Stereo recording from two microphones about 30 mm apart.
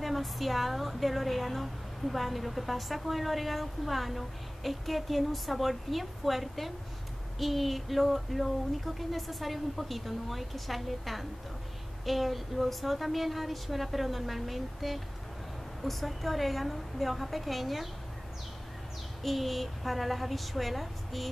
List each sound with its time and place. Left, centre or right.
0.0 s a woman's voice: centre
19.2 s a woman's voice: centre